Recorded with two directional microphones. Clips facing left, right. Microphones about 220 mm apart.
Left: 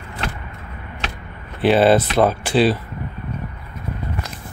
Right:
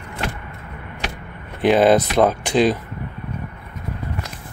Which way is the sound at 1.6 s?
15° right (ahead or behind).